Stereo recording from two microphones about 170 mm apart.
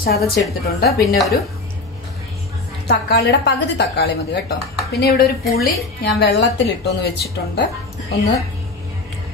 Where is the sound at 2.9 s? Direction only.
75° left (ahead or behind).